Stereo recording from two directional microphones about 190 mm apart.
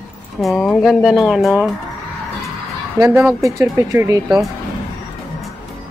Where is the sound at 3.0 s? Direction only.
10° right (ahead or behind).